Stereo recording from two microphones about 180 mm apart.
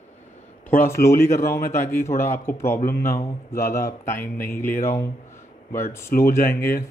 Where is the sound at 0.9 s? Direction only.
15° left (ahead or behind).